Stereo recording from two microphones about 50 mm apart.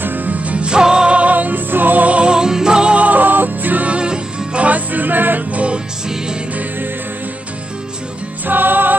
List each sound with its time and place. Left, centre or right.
0.0 s music: right; by 3.0 s centre
3.0 s music: right; by 4.6 s centre
4.6 s music: right
8.5 s music: right